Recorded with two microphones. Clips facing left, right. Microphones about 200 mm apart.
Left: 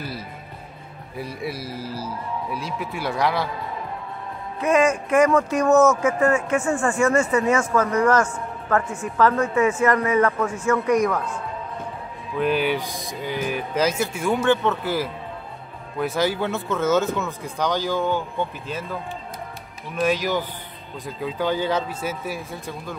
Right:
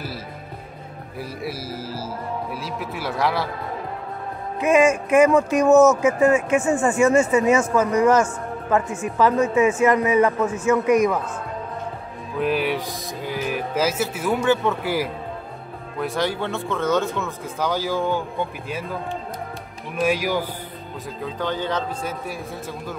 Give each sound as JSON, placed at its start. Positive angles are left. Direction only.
{"t": 1.2, "sound": "speech", "side_deg": -5}
{"t": 4.6, "sound": "a woman's voice", "side_deg": -20}
{"t": 12.4, "sound": "speech", "side_deg": 0}
{"t": 16.0, "sound": "speech", "side_deg": 5}
{"t": 20.0, "sound": "a woman's voice", "side_deg": -10}
{"t": 21.2, "sound": "speech", "side_deg": 10}